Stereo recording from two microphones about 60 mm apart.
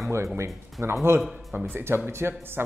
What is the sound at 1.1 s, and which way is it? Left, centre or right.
Speech, right.